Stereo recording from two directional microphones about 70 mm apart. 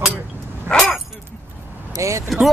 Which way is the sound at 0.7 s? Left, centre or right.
Right.